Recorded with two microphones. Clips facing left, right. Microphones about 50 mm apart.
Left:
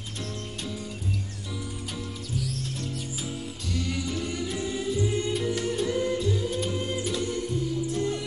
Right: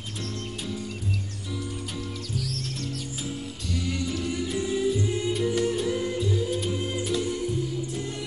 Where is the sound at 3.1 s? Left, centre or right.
Centre.